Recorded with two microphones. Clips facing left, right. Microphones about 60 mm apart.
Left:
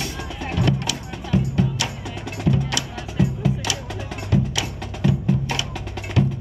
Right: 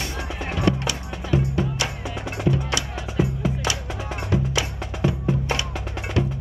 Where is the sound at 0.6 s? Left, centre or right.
Right.